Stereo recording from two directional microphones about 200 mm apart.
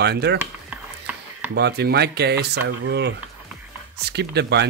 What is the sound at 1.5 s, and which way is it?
Speech, 55° right (ahead or behind).